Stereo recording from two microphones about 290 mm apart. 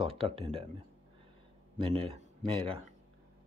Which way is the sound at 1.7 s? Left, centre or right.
Centre.